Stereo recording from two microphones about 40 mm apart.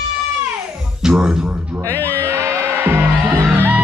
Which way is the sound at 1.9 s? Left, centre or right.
Left.